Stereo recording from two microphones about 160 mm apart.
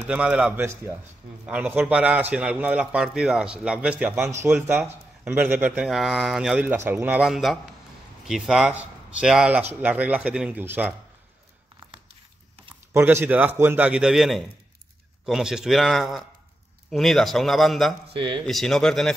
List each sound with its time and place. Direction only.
0.0 s a man's voice: 10° right (ahead or behind)
12.9 s a man's voice: 15° right (ahead or behind)
18.0 s speech: 30° right (ahead or behind)
18.5 s speech: centre (ahead or behind)